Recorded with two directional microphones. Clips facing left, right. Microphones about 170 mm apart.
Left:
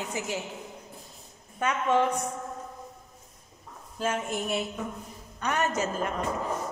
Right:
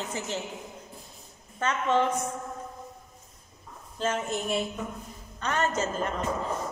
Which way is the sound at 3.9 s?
10° left (ahead or behind).